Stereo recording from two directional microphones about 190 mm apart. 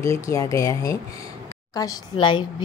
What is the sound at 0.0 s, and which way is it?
A woman's voice, 15° left (ahead or behind).